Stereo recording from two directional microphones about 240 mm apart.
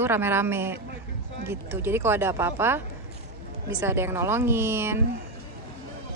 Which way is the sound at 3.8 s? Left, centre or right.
Centre.